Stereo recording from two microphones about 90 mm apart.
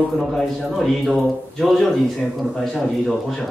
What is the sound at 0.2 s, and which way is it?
A man's voice, centre (ahead or behind).